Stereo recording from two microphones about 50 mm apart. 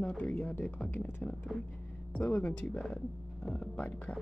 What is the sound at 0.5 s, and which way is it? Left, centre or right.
Speech, left.